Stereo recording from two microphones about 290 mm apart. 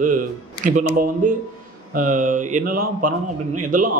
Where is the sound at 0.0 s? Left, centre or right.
Right.